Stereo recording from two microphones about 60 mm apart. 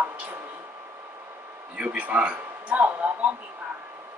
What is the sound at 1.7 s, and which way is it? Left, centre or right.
Speech, right.